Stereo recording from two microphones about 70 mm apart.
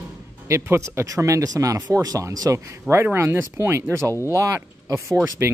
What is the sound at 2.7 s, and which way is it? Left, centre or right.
Speech, right.